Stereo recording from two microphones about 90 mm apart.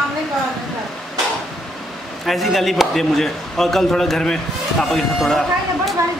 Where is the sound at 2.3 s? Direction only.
Centre (ahead or behind).